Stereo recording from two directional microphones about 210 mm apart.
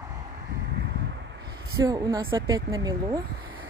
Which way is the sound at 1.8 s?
15° right (ahead or behind).